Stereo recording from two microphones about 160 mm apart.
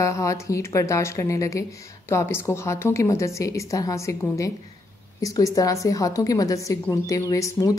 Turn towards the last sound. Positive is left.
turn(degrees=20)  # may be behind; listen again after turning